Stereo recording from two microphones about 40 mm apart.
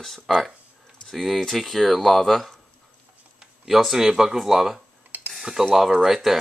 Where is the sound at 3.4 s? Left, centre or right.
Centre.